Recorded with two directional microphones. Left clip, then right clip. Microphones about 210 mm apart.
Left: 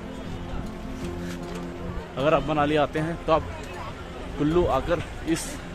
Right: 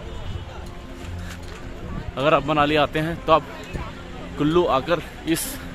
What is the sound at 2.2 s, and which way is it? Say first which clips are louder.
A man's voice: right 4 dB; 15° right (ahead or behind).